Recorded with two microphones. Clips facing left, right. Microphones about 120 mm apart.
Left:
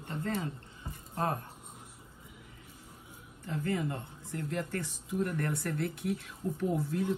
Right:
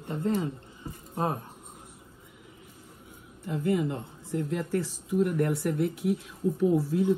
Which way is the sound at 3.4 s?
15° right (ahead or behind).